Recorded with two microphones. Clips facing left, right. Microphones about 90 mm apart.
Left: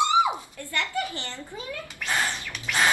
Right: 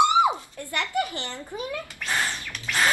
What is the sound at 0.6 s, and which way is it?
A child's voice, 20° right (ahead or behind).